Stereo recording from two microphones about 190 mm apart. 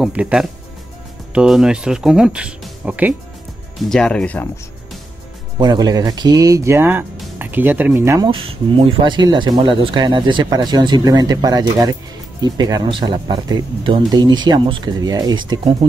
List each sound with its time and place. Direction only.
0.0 s speech: 5° right (ahead or behind)
3.9 s speech: 5° left (ahead or behind)
5.6 s speech: 20° right (ahead or behind)
8.3 s speech: 30° right (ahead or behind)